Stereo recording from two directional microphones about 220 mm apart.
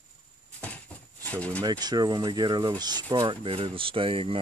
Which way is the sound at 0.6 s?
5° left (ahead or behind).